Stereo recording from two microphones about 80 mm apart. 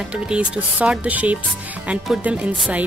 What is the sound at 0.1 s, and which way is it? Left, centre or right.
Speech, centre.